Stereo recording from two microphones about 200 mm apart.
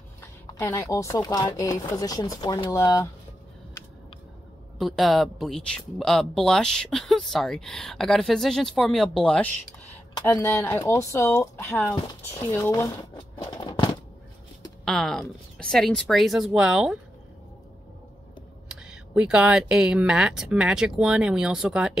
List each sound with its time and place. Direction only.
0.6 s speech: 15° left (ahead or behind)
4.7 s speech: centre (ahead or behind)
10.1 s speech: 15° left (ahead or behind)
13.4 s a sound: 20° left (ahead or behind)
14.9 s speech: centre (ahead or behind)
18.7 s speech: 5° right (ahead or behind)